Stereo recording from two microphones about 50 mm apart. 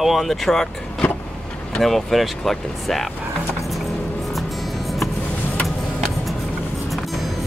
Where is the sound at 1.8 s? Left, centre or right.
Centre.